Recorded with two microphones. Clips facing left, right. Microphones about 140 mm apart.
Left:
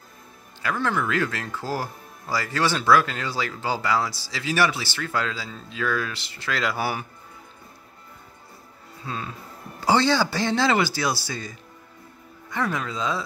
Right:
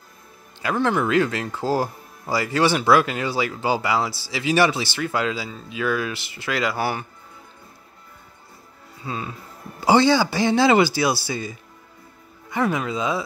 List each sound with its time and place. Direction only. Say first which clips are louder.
0.6 s speech: right 4 dB; 20° right (ahead or behind); by 7.1 s 5° left (ahead or behind)
9.0 s speech: right 2 dB; 10° right (ahead or behind)